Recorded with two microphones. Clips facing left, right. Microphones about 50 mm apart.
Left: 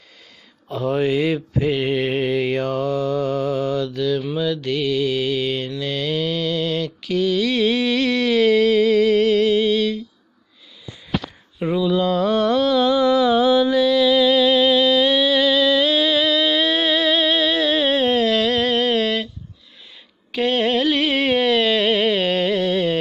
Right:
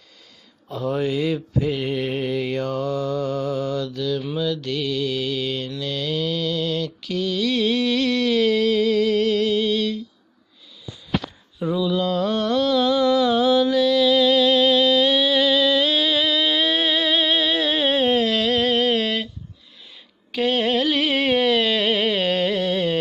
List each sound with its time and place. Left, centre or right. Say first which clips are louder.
0.7 s mantra: left 3 dB; left
4.2 s mantra: left 2 dB; left
11.6 s a sound: left 3 dB; left; by 19.2 s centre
20.2 s carnatic music: left 2 dB; centre